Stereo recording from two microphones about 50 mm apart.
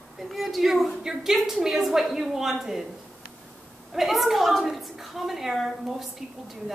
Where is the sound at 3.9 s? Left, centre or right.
Centre.